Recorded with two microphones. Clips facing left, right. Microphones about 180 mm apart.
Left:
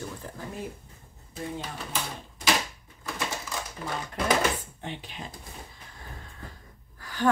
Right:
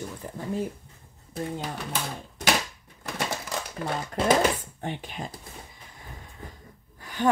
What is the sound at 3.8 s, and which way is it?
Speech, 40° right (ahead or behind).